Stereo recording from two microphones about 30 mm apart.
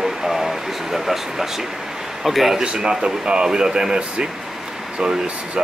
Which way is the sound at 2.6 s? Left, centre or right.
Right.